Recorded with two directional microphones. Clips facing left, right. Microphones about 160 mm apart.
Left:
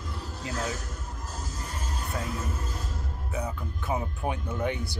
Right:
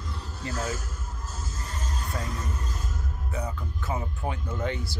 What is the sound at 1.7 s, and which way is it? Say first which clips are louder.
Music: even; 5° left (ahead or behind).